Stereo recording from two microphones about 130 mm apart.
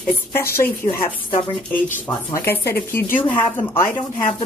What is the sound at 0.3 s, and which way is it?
Speech, 20° left (ahead or behind).